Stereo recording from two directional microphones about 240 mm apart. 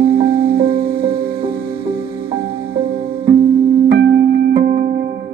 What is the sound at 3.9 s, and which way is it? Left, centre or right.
Music, right.